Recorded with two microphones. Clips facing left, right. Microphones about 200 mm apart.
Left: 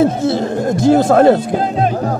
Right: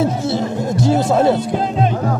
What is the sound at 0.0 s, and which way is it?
Speech, 50° left (ahead or behind).